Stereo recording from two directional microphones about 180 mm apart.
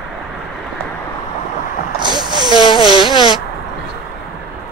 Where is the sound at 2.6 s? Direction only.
25° left (ahead or behind).